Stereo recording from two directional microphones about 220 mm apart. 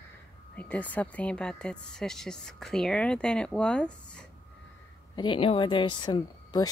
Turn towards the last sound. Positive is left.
turn(degrees=20)  # may be behind; listen again after turning